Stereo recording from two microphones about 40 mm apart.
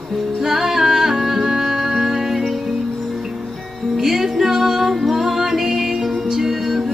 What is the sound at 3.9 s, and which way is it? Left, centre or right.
Music, centre.